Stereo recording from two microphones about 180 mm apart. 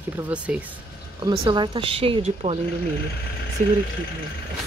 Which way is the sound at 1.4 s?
25° right (ahead or behind).